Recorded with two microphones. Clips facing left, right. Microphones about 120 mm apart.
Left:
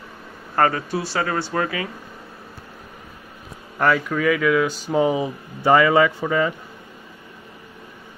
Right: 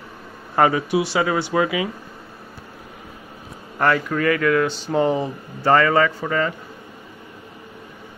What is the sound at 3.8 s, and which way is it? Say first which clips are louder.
Speech: even; centre (ahead or behind).